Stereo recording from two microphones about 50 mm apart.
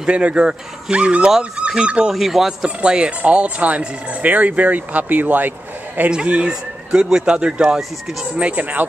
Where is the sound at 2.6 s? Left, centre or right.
Centre; by 5.5 s right.